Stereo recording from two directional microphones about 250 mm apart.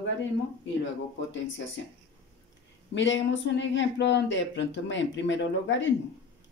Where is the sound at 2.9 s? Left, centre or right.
Left.